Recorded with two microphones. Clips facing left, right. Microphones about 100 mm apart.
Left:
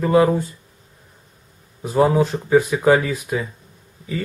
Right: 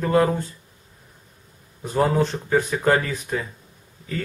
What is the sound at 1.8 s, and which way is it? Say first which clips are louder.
Speech: left 4 dB; 5° left (ahead or behind).